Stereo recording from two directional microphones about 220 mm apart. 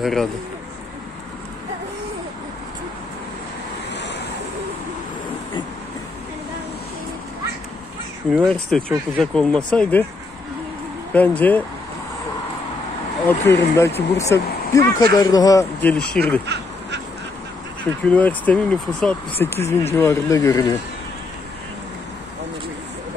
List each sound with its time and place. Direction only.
0.0 s speech: centre (ahead or behind)
3.9 s vehicle: 50° left (ahead or behind)
8.3 s speech: centre (ahead or behind)
11.1 s speech: 5° left (ahead or behind)
13.3 s speech: 10° left (ahead or behind)
18.0 s speech: 5° left (ahead or behind)